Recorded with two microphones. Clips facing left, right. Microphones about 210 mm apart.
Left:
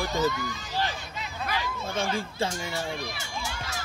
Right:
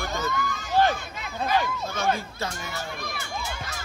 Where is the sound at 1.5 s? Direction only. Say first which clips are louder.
Right 8 dB; 50° right (ahead or behind).